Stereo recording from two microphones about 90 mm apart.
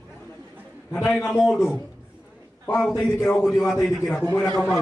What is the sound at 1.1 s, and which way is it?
Speech, centre (ahead or behind).